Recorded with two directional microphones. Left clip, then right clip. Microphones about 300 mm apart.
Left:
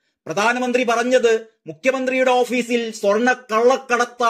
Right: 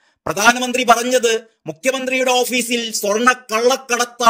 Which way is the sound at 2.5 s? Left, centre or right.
Right.